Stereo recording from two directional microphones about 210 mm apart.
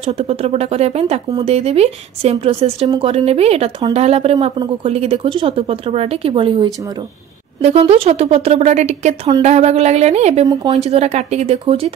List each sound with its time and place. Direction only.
0.0 s speech: 30° right (ahead or behind)
10.4 s speech: 20° right (ahead or behind)
10.7 s speech: 30° right (ahead or behind)